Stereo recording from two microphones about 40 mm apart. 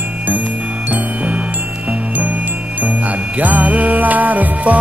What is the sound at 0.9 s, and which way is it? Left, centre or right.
Music, right.